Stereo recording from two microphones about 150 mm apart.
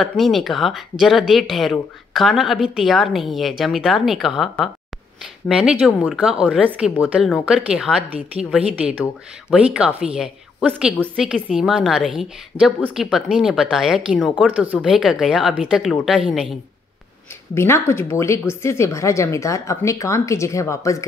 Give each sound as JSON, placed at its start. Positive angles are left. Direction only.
{"t": 0.0, "sound": "speech", "side_deg": 0}
{"t": 17.6, "sound": "speech", "side_deg": 15}